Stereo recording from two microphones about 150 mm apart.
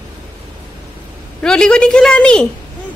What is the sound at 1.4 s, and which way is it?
A woman's voice, 5° left (ahead or behind).